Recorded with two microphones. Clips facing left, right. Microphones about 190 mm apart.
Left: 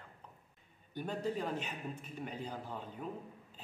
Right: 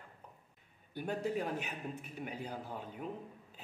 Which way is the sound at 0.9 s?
10° right (ahead or behind).